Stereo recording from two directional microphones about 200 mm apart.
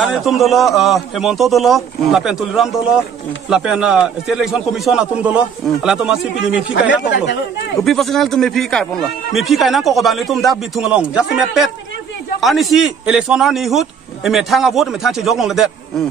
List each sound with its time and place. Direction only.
0.0 s speech: centre (ahead or behind)
6.7 s speech: 60° left (ahead or behind)
7.8 s speech: centre (ahead or behind)
12.4 s speech: centre (ahead or behind)